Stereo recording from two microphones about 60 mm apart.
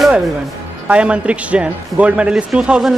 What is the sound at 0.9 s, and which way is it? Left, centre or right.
Speech, centre.